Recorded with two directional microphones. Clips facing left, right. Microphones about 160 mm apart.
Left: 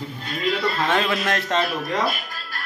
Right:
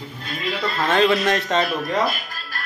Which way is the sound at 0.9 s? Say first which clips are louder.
Right 8 dB; 5° left (ahead or behind).